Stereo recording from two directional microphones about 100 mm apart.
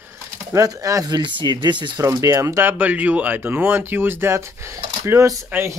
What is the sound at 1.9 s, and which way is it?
Speech, 40° right (ahead or behind).